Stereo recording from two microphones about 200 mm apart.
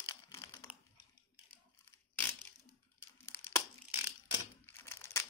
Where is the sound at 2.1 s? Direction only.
10° left (ahead or behind).